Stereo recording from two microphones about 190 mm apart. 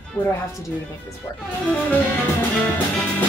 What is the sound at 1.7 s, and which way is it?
Speech, 10° left (ahead or behind).